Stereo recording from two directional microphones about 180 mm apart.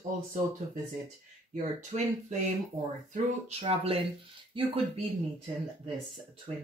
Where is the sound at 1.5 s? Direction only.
40° right (ahead or behind).